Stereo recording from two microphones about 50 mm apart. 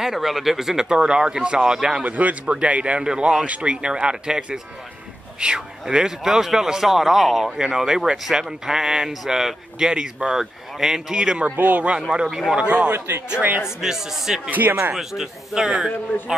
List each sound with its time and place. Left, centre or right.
0.0 s a man's voice: centre
2.0 s speech: right; by 3.4 s centre
3.4 s speech: right
3.7 s a man's voice: centre
11.1 s speech: right
11.5 s speech: right
12.1 s speech: centre
12.9 s a man's voice: right
13.6 s a man's voice: centre
14.5 s speech: right
15.0 s a man's voice: centre